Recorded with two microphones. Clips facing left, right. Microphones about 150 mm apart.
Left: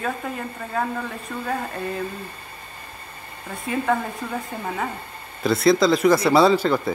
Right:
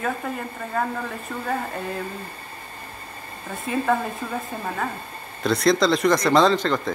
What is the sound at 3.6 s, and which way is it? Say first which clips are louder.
Speech: even; centre (ahead or behind).